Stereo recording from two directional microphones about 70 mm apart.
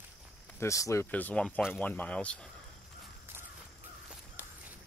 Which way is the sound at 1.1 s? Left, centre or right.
Left.